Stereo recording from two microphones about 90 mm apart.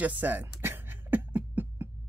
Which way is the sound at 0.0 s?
20° right (ahead or behind).